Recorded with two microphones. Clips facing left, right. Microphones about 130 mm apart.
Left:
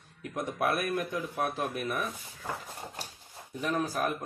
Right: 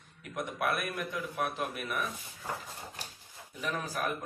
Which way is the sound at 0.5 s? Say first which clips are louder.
Left 4 dB; 35° left (ahead or behind).